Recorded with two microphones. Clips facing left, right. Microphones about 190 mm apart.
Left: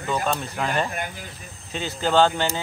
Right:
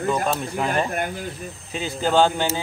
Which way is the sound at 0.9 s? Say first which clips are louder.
Right 5 dB; 50° right (ahead or behind).